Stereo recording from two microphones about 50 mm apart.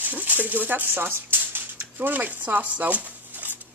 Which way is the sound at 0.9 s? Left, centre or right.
Right.